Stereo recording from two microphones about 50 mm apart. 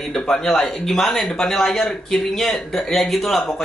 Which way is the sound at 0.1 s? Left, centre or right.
Centre.